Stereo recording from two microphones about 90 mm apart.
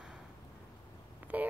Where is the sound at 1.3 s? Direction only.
15° right (ahead or behind).